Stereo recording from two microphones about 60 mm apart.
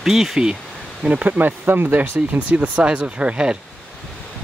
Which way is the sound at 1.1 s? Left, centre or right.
Right.